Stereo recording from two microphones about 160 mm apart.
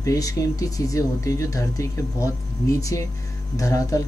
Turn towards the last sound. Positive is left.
turn(degrees=20)  # may be behind; listen again after turning